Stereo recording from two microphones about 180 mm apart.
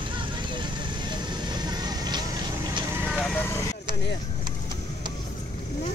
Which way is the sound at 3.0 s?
Centre (ahead or behind).